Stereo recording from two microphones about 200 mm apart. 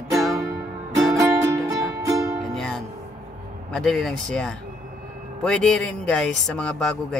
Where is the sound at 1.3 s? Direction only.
15° right (ahead or behind).